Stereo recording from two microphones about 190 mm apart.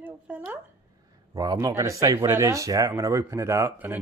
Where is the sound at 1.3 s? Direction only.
20° right (ahead or behind).